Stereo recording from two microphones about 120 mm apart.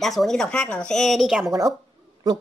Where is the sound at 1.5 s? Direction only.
30° right (ahead or behind).